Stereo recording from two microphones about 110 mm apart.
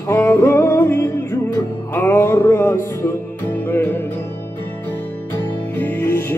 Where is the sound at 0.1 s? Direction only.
20° left (ahead or behind).